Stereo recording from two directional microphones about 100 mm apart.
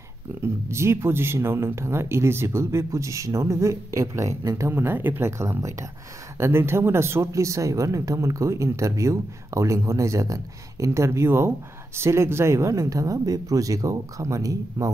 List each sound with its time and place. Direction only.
0.4 s speech: 25° right (ahead or behind)